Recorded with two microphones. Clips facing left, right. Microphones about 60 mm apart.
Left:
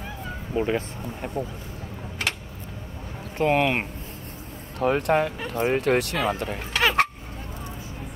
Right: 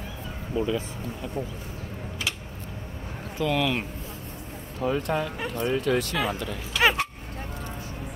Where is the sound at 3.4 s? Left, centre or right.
Left.